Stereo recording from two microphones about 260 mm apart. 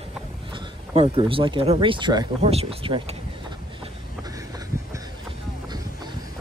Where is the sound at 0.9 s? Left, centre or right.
Right.